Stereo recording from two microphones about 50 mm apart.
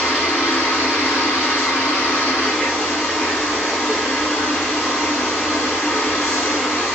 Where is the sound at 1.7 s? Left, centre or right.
Left.